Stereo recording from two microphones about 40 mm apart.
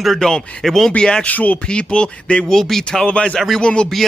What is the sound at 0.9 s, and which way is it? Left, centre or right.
Speech, left.